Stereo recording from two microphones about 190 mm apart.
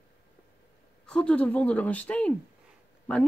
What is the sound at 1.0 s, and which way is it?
Speech, 5° left (ahead or behind).